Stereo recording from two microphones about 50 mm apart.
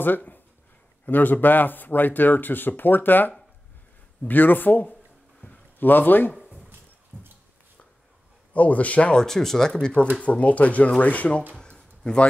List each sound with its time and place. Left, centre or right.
0.0 s speech: left
5.4 s a sound: left
5.8 s speech: left
8.5 s speech: left
9.1 s speech: centre
10.2 s speech: left
11.5 s a sound: centre